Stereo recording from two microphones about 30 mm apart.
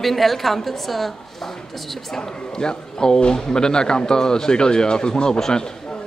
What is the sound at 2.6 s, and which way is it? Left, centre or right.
Speech, left.